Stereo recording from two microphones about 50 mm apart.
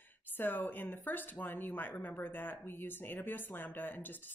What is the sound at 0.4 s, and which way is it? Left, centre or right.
Speech, left.